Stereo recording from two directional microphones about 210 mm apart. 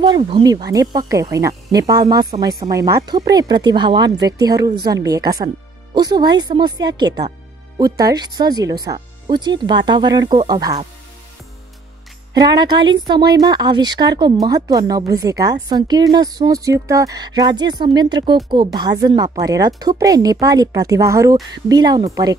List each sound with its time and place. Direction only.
0.0 s a woman's voice: 20° right (ahead or behind)
12.4 s a woman's voice: 20° right (ahead or behind)